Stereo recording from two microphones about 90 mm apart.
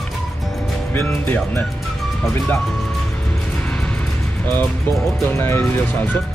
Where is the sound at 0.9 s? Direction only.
25° left (ahead or behind).